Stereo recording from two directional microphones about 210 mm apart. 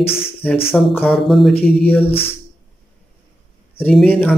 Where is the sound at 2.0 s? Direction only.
30° left (ahead or behind).